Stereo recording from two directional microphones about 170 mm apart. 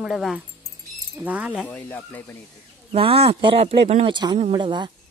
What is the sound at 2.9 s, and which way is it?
A man's voice, 35° right (ahead or behind).